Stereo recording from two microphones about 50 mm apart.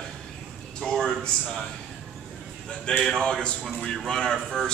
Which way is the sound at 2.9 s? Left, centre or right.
Centre.